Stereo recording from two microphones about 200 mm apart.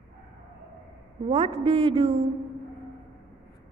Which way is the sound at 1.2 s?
30° right (ahead or behind).